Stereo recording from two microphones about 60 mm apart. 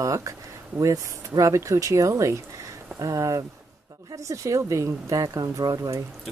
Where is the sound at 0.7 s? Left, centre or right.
Right.